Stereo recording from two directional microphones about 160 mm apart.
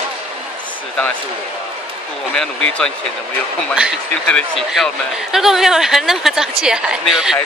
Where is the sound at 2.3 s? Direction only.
5° left (ahead or behind).